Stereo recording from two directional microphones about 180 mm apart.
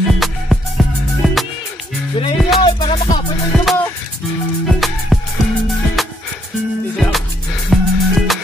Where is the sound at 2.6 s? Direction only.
25° left (ahead or behind).